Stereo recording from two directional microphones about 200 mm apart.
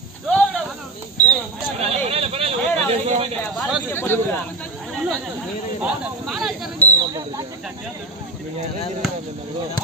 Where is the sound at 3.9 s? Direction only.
10° left (ahead or behind).